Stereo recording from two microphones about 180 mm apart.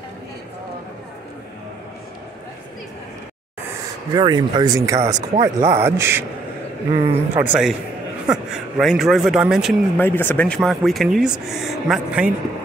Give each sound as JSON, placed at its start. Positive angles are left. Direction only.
{"t": 4.1, "sound": "a man's voice", "side_deg": -25}
{"t": 6.9, "sound": "speech", "side_deg": -30}
{"t": 7.3, "sound": "a man's voice", "side_deg": -5}
{"t": 9.9, "sound": "speech", "side_deg": 10}